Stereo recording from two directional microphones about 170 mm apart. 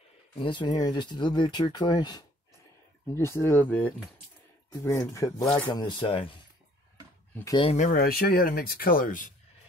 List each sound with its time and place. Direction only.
0.4 s speech: 30° left (ahead or behind)
5.7 s speech: 25° left (ahead or behind)
7.7 s speech: 55° left (ahead or behind)